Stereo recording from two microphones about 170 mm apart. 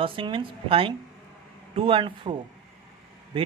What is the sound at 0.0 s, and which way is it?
Speech, 30° right (ahead or behind).